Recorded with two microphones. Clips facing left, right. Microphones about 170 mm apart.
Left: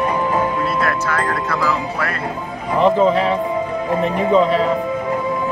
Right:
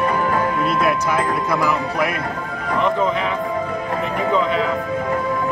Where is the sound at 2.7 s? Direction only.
35° left (ahead or behind).